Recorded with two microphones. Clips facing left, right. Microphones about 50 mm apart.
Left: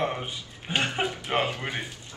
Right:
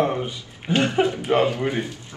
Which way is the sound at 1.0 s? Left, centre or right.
Centre.